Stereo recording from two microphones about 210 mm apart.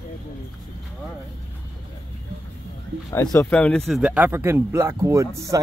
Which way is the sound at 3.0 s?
15° left (ahead or behind).